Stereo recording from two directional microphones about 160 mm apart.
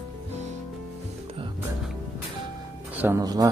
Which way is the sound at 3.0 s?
20° right (ahead or behind).